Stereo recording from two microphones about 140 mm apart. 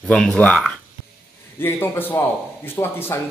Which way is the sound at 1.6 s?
15° left (ahead or behind).